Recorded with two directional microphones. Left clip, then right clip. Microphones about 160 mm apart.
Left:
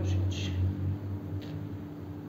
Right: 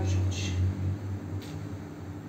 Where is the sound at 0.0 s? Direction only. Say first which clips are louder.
Right 2 dB; 35° left (ahead or behind).